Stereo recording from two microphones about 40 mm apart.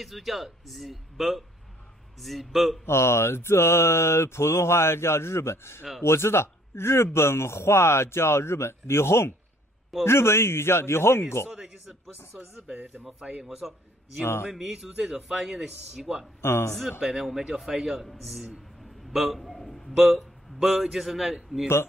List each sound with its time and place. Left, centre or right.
0.0 s speech: centre
2.8 s speech: left
12.7 s speech: right
13.2 s speech: right
14.5 s a man's voice: centre
16.3 s speech: left
17.0 s a man's voice: centre